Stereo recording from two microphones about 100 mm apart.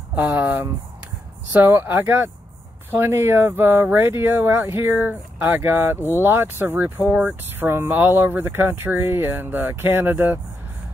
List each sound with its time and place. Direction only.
0.1 s speech: 20° right (ahead or behind)
5.9 s speech: 25° left (ahead or behind)
6.2 s speech: 20° right (ahead or behind)